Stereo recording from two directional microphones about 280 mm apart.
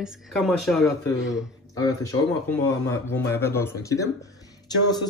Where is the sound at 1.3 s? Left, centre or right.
Centre.